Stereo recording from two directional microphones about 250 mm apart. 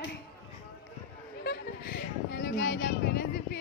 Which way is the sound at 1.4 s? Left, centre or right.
Left.